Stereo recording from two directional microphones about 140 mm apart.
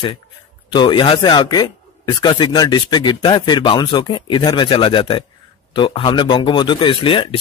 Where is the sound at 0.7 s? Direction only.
35° left (ahead or behind).